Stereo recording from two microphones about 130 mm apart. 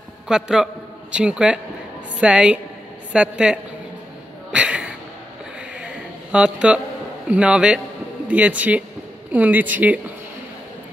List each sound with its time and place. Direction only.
0.3 s a man's voice: 5° right (ahead or behind)
4.5 s a sound: 10° right (ahead or behind)
6.3 s speech: 10° right (ahead or behind)